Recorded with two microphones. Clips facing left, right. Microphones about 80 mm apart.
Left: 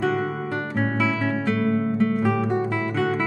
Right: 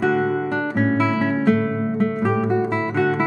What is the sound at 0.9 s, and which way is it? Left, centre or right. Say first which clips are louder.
Music: right 4 dB; right.